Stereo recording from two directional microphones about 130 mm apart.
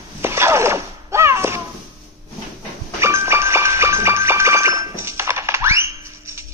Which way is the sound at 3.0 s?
20° right (ahead or behind).